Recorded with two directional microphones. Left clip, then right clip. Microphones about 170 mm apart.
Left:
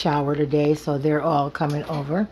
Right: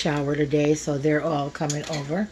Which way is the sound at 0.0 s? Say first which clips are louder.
Left 2 dB; 10° left (ahead or behind).